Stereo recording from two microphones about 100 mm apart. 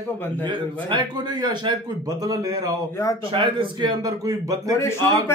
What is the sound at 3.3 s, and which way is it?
Speech, 60° right (ahead or behind).